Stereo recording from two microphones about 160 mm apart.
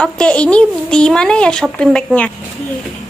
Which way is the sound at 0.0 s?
5° left (ahead or behind).